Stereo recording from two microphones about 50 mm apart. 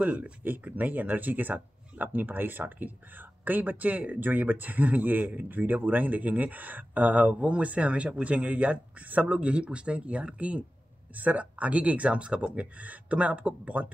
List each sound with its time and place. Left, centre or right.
0.0 s speech: right